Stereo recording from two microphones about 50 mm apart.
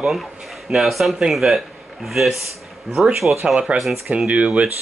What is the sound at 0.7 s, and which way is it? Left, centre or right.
Speech, centre.